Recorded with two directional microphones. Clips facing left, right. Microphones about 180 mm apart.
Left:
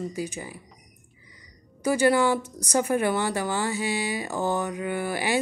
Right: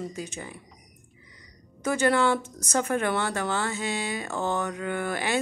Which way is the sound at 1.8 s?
10° left (ahead or behind).